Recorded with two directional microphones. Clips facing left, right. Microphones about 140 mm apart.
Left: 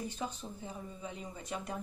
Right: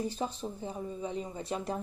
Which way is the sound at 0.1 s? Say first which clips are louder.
Right 5 dB; 30° right (ahead or behind).